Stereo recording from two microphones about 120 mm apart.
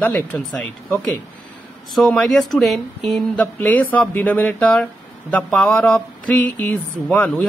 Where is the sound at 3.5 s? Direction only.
15° left (ahead or behind).